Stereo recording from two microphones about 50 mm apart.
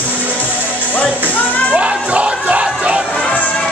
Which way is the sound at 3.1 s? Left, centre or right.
Left.